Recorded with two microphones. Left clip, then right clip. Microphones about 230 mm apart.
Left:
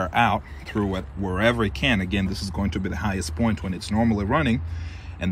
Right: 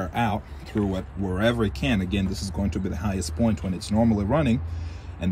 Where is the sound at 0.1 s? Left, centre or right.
Centre.